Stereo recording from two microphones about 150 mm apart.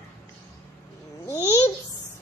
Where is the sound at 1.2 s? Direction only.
15° left (ahead or behind).